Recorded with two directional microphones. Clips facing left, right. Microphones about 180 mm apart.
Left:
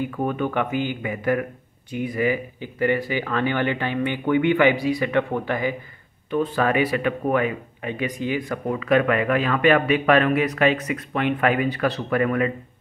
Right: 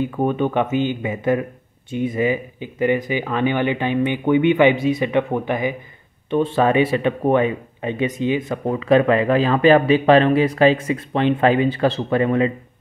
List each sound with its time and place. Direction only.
0.0 s speech: 25° right (ahead or behind)